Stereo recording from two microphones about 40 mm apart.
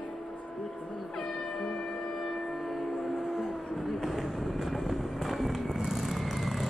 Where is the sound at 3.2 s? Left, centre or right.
Centre.